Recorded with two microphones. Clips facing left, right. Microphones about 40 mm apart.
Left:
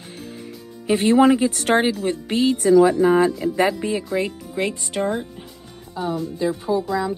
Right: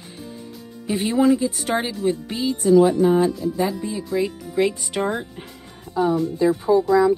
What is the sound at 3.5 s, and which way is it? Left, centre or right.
Speech, left.